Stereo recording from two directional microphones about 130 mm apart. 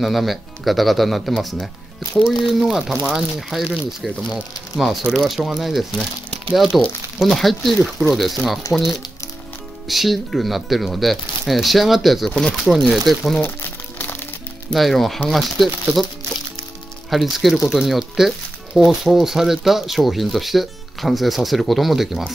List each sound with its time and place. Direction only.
0.0 s speech: centre (ahead or behind)
8.6 s speech: 25° left (ahead or behind)
9.8 s speech: centre (ahead or behind)
13.4 s crumpling: 15° left (ahead or behind)
14.7 s speech: centre (ahead or behind)
17.1 s speech: centre (ahead or behind)